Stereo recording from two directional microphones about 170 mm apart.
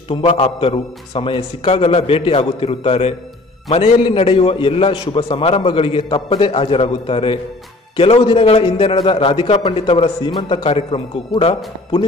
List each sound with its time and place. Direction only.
0.1 s a man's voice: 30° left (ahead or behind)